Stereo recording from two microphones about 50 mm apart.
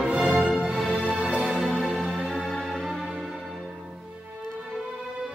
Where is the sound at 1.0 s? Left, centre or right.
Right.